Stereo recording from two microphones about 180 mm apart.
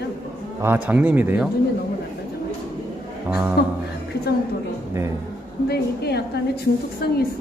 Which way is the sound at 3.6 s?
60° left (ahead or behind).